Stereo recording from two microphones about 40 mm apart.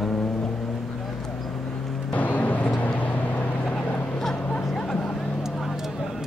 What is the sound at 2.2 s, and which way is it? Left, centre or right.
Music, left.